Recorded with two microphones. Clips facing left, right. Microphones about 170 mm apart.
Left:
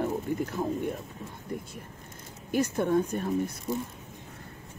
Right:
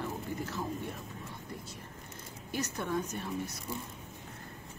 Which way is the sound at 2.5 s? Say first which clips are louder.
Left 9 dB; 50° left (ahead or behind).